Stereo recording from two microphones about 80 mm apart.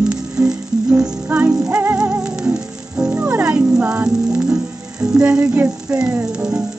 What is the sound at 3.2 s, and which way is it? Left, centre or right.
Speech, right.